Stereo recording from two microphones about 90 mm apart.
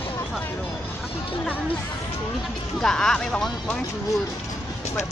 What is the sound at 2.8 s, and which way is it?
Speech, 5° left (ahead or behind).